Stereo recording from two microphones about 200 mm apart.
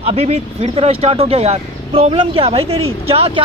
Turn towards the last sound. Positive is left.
turn(degrees=-30)  # may be behind; listen again after turning